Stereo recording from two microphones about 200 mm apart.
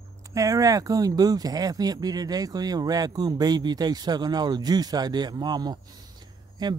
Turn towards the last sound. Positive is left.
turn(degrees=-20)  # may be behind; listen again after turning